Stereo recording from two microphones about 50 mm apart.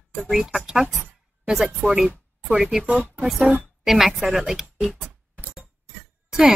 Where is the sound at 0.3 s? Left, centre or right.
Centre.